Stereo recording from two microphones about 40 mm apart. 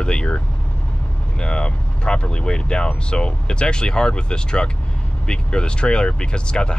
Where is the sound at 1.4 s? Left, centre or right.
Left.